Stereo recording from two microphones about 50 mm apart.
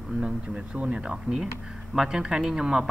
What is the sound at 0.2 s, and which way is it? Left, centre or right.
Speech, right.